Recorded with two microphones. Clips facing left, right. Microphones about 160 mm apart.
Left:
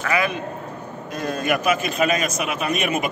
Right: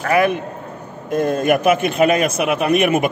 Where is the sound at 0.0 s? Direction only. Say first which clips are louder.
Right 6 dB; 55° right (ahead or behind).